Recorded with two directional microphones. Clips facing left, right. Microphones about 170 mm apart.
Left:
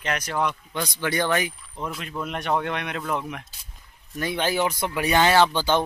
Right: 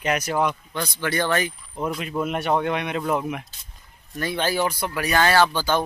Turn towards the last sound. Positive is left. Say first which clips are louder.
# even
turn(degrees=20)  # may be behind; listen again after turning